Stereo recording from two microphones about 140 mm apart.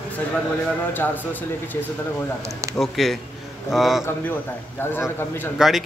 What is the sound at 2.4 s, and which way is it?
Speech, 20° right (ahead or behind).